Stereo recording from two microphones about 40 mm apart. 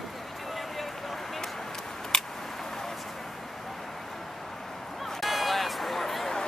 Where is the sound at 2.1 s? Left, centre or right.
Centre.